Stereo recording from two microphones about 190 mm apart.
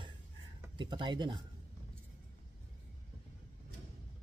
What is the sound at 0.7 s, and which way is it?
Speech, 25° right (ahead or behind).